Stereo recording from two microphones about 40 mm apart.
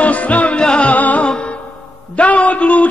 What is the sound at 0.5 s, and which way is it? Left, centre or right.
Music, left.